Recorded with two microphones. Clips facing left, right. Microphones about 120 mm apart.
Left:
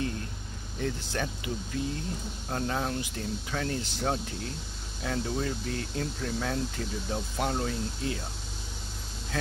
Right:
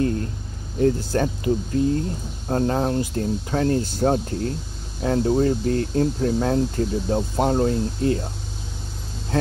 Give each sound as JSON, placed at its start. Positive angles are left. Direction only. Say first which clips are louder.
{"t": 0.7, "sound": "speech", "louder": "right 12 dB", "side_deg": -40}